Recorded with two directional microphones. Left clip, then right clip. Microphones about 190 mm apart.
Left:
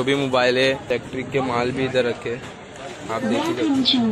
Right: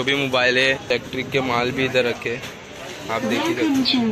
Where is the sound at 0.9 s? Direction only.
Centre (ahead or behind).